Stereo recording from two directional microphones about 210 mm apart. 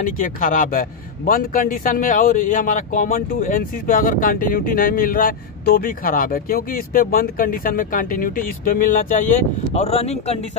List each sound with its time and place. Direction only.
0.0 s a man's voice: 40° left (ahead or behind)